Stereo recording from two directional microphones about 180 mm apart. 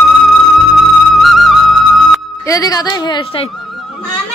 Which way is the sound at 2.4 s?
20° left (ahead or behind).